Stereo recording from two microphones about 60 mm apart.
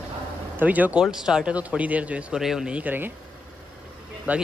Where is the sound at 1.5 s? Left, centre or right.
Right.